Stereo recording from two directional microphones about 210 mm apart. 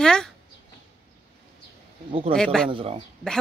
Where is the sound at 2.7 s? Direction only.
25° right (ahead or behind).